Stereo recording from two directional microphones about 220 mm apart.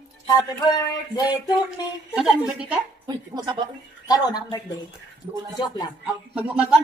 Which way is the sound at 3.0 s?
20° right (ahead or behind).